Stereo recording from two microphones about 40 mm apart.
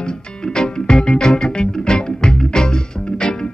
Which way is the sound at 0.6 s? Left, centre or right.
Left.